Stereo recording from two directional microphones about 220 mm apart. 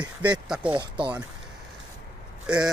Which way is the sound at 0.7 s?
20° right (ahead or behind).